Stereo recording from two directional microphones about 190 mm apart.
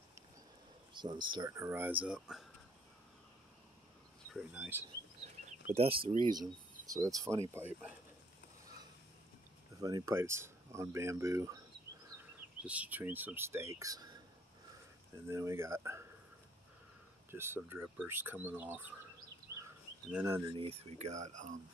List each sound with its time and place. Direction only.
0.9 s speech: 25° right (ahead or behind); by 2.4 s 5° right (ahead or behind)
4.3 s speech: 5° right (ahead or behind)
5.7 s speech: 30° right (ahead or behind); by 7.9 s 10° right (ahead or behind)
9.8 s speech: 20° right (ahead or behind)
15.2 s speech: 15° right (ahead or behind)
17.3 s speech: 10° right (ahead or behind)
20.1 s speech: 10° right (ahead or behind)
20.5 s speech: 30° right (ahead or behind)